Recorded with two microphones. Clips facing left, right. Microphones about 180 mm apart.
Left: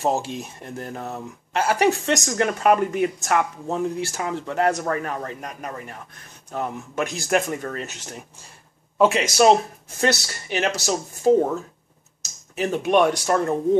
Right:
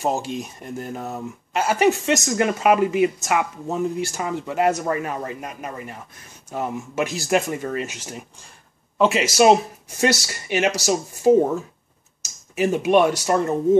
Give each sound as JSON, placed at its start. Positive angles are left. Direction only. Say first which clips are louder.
{"t": 0.0, "sound": "speech", "louder": "even", "side_deg": 0}